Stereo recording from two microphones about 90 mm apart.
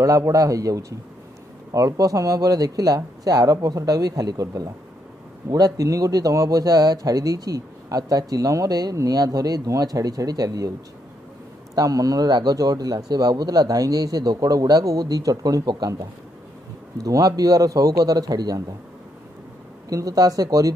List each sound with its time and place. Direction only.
0.0 s a man's voice: 40° right (ahead or behind)
11.7 s a man's voice: 45° right (ahead or behind)
17.0 s a man's voice: 40° right (ahead or behind)
19.9 s a man's voice: 40° right (ahead or behind)